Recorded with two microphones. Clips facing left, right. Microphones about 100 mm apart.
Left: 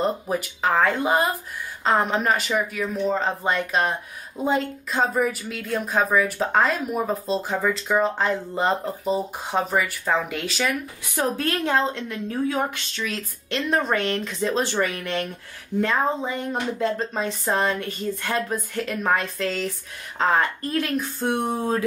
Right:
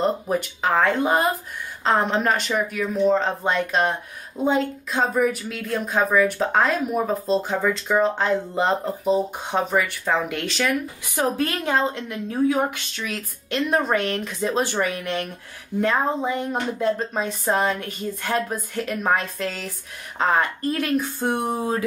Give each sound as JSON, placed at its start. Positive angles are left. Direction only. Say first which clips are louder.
{"t": 0.3, "sound": "speech", "louder": "right 1 dB", "side_deg": 0}
{"t": 11.1, "sound": "a woman's voice", "louder": "right 1 dB", "side_deg": -15}